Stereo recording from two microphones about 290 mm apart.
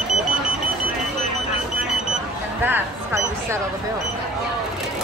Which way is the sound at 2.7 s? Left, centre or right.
Centre.